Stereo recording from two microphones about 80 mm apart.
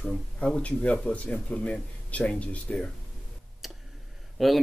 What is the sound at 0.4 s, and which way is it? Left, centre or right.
Speech, centre.